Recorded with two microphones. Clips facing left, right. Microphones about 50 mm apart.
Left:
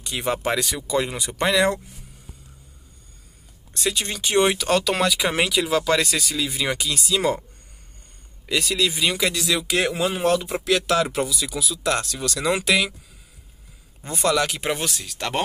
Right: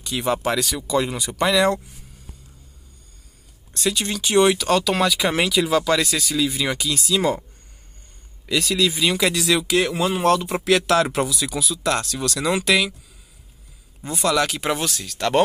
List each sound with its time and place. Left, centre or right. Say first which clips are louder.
0.0 s speech: right 2 dB; centre
0.4 s speech: right 1 dB; left
3.7 s speech: right 2 dB; centre
5.9 s speech: right 1 dB; left
6.1 s speech: right 3 dB; centre
6.8 s speech: right 2 dB; left
7.2 s speech: right 1 dB; centre
8.5 s speech: right 2 dB; left
8.9 s speech: right 2 dB; centre
9.2 s speech: right 3 dB; centre
9.7 s speech: right 2 dB; centre
10.5 s speech: right 3 dB; centre
10.9 s speech: right 2 dB; centre
14.2 s speech: right 1 dB; centre